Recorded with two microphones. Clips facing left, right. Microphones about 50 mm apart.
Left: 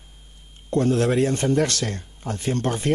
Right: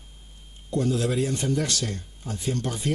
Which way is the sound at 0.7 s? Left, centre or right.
Left.